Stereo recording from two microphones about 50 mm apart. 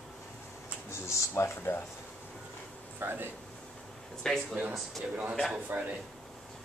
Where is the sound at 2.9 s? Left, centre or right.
Right.